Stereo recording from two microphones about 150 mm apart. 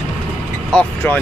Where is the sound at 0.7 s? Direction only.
10° left (ahead or behind).